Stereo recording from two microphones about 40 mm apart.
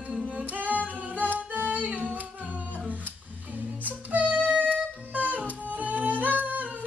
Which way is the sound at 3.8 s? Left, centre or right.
Right.